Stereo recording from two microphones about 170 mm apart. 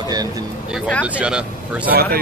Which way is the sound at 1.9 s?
65° right (ahead or behind).